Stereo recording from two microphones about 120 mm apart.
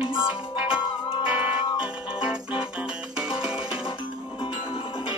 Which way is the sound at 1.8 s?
5° right (ahead or behind).